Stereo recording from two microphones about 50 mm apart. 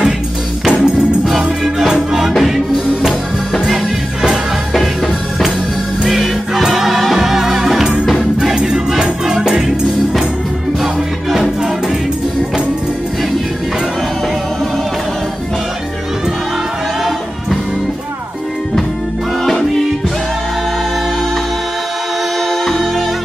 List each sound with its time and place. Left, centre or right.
0.7 s music: centre
22.7 s music: centre